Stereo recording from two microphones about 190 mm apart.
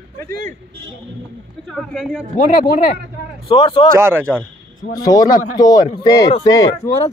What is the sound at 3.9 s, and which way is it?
Speech, 15° right (ahead or behind).